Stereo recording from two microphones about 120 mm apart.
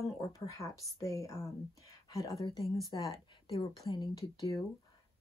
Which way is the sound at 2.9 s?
40° left (ahead or behind).